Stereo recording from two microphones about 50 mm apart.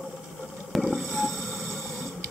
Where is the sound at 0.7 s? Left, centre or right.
Centre.